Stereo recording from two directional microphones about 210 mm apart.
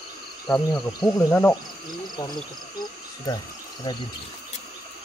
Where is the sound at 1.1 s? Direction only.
10° left (ahead or behind).